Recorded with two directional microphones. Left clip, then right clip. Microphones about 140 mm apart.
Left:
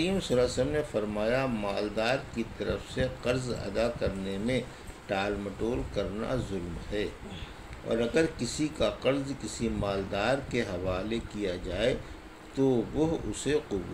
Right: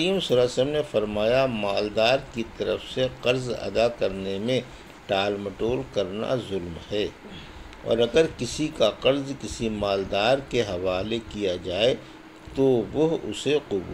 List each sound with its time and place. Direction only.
0.0 s speech: 25° right (ahead or behind)